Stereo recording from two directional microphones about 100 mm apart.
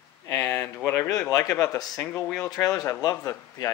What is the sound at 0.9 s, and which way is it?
Speech, 35° left (ahead or behind).